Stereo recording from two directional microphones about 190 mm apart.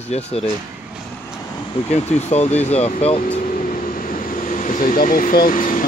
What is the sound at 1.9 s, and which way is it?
Speech, 35° left (ahead or behind).